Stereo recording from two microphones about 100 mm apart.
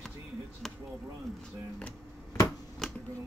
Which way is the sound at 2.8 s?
5° left (ahead or behind).